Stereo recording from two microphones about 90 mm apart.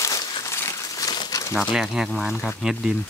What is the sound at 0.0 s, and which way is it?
Crumpling, 40° left (ahead or behind).